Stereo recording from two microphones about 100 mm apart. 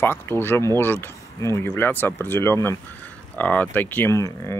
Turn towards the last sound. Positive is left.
turn(degrees=30)  # may be behind; listen again after turning